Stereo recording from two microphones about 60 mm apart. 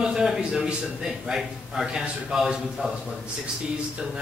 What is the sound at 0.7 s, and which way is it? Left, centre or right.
A man's voice, centre.